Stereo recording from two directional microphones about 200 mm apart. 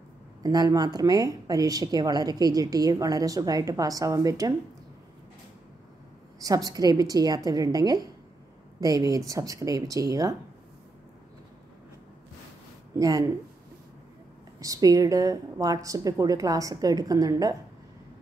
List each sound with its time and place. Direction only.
0.4 s speech: 20° right (ahead or behind)
6.4 s a woman's voice: 20° right (ahead or behind)
12.9 s speech: 15° right (ahead or behind)
14.6 s speech: 15° right (ahead or behind)